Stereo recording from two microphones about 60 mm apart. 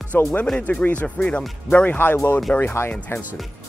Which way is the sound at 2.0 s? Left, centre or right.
Left.